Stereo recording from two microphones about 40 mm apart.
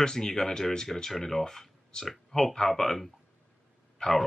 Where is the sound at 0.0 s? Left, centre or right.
Centre.